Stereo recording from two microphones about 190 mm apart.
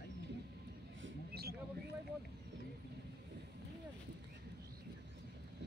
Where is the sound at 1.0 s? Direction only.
55° right (ahead or behind).